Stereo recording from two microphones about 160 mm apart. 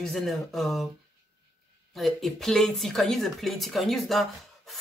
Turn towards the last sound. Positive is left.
turn(degrees=0)  # may be behind; listen again after turning